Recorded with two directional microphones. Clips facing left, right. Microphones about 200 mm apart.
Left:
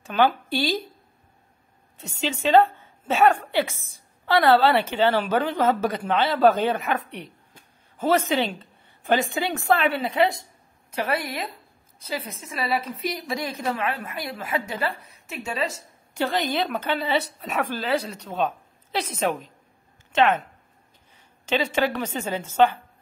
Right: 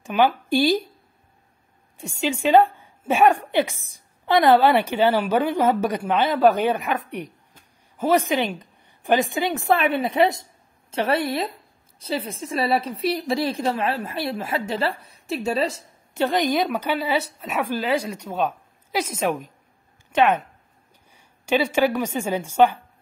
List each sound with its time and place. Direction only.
0.0 s a woman's voice: 15° right (ahead or behind)
2.0 s a woman's voice: 10° right (ahead or behind)
8.0 s a woman's voice: 15° right (ahead or behind); by 15.8 s 35° right (ahead or behind)
16.2 s a woman's voice: 15° right (ahead or behind)
21.5 s a woman's voice: 10° right (ahead or behind)